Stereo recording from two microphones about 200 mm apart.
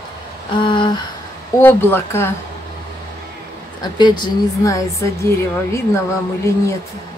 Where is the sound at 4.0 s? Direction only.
20° left (ahead or behind).